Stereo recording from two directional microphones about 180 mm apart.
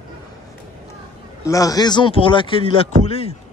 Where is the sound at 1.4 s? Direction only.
20° left (ahead or behind).